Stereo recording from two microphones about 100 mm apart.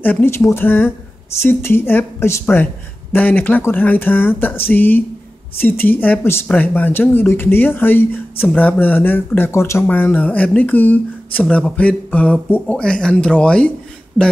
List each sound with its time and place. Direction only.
0.0 s speech: 20° left (ahead or behind); by 14.3 s centre (ahead or behind)